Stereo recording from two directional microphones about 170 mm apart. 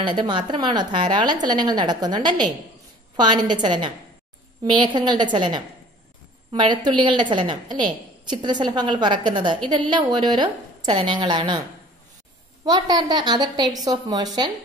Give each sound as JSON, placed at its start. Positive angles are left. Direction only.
{"t": 0.0, "sound": "a woman's voice", "side_deg": -25}
{"t": 12.6, "sound": "a woman's voice", "side_deg": -25}